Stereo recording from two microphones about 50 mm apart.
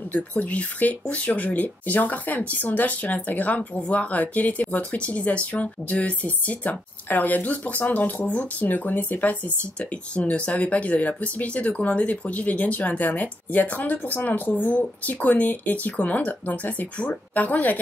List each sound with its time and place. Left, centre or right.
0.1 s a woman's voice: left